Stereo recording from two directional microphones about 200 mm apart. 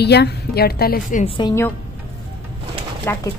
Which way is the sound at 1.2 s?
25° left (ahead or behind).